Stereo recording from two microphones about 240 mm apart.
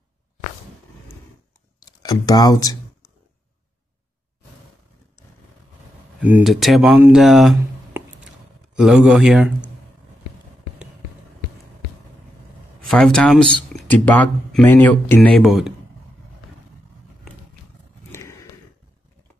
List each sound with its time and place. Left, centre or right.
1.8 s a sound: centre
6.2 s speech: centre
12.8 s speech: centre